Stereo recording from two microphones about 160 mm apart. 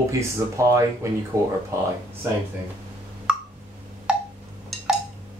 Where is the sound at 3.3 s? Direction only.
5° right (ahead or behind).